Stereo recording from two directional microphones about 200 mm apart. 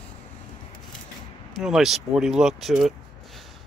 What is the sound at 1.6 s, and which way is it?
Speech, centre (ahead or behind).